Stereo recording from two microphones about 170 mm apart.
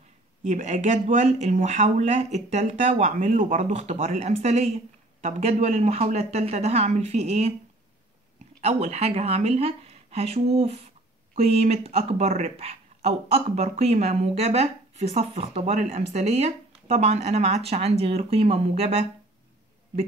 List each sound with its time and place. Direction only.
0.4 s speech: 45° right (ahead or behind)
8.5 s speech: 40° right (ahead or behind)